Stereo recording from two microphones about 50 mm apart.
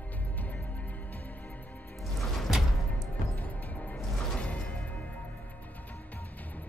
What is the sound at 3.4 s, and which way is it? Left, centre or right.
Music, left.